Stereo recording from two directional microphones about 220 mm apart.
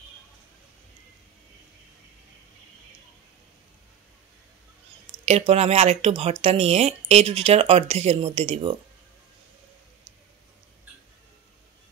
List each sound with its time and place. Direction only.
5.5 s speech: 30° right (ahead or behind)